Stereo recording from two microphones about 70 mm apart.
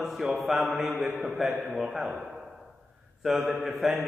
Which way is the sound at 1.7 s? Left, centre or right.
Centre.